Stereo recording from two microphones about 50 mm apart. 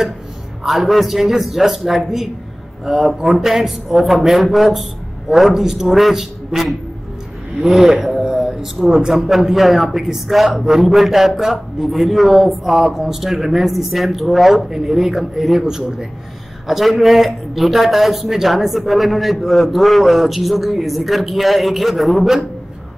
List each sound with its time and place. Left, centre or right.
0.7 s a man's voice: centre